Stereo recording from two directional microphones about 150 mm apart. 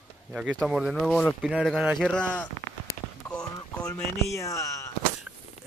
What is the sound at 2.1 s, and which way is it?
Speech, 10° left (ahead or behind).